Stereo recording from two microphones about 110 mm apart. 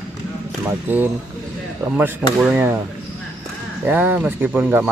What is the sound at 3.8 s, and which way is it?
Speech, 15° right (ahead or behind).